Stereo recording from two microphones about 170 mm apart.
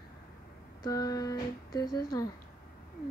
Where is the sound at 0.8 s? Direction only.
20° left (ahead or behind).